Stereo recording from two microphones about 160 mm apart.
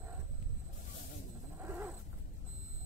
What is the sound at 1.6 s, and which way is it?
Dog, 10° right (ahead or behind).